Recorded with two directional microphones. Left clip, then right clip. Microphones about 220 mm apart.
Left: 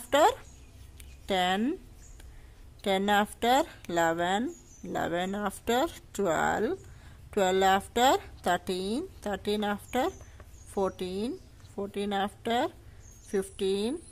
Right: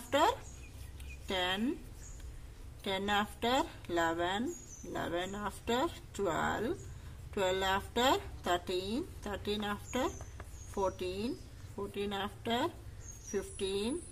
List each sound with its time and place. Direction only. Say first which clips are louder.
0.1 s a sound: left 6 dB; 45° left (ahead or behind)
1.2 s speech: left 7 dB; 45° left (ahead or behind)
2.8 s a woman's voice: left 7 dB; 45° left (ahead or behind)